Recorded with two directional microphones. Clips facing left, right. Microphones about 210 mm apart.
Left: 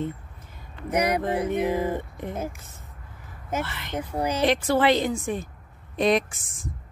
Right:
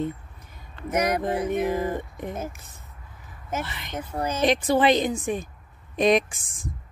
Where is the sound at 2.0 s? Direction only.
15° right (ahead or behind).